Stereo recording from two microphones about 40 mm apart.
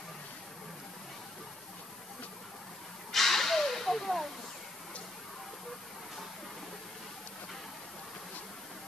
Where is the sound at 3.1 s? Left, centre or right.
Centre.